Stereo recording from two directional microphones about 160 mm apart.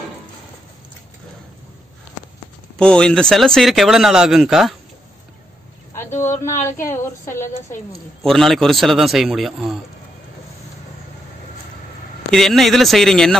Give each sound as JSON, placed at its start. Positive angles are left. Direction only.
{"t": 2.8, "sound": "speech", "side_deg": 5}
{"t": 6.5, "sound": "child singing", "side_deg": 50}
{"t": 6.9, "sound": "a woman's voice", "side_deg": 15}
{"t": 7.9, "sound": "speech", "side_deg": 0}
{"t": 12.3, "sound": "speech", "side_deg": 0}